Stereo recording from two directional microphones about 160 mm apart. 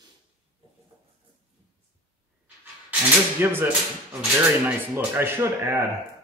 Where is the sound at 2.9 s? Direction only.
10° right (ahead or behind).